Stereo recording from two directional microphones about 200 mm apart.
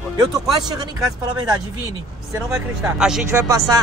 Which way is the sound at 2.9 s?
5° right (ahead or behind).